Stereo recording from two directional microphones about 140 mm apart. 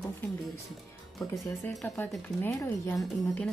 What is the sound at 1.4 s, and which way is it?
Speech, 15° left (ahead or behind).